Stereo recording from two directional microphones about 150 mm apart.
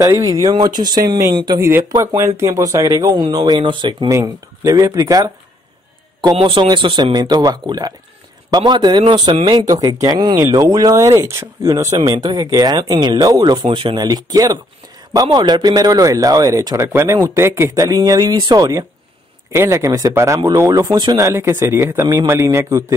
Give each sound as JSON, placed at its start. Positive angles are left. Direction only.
{"t": 0.1, "sound": "a man's voice", "side_deg": -25}
{"t": 1.6, "sound": "a man's voice", "side_deg": -15}
{"t": 4.1, "sound": "a man's voice", "side_deg": -20}
{"t": 6.3, "sound": "a man's voice", "side_deg": -40}
{"t": 21.2, "sound": "a man's voice", "side_deg": -20}